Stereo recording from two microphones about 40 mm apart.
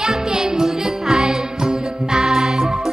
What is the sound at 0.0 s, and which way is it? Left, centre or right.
Music, centre.